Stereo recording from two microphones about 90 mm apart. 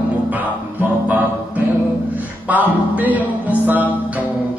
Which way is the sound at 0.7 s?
20° right (ahead or behind).